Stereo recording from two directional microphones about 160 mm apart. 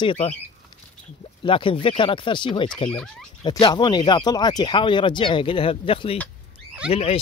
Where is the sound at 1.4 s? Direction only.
35° left (ahead or behind).